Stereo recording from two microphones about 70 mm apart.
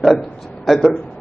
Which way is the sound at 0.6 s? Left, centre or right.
Centre.